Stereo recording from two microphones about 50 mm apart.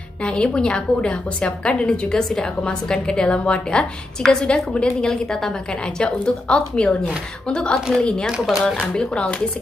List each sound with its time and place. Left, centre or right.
0.2 s a woman's voice: left
6.2 s a woman's voice: centre